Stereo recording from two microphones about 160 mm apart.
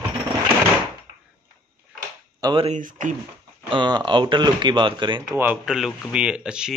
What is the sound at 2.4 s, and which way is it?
Speech, 30° right (ahead or behind).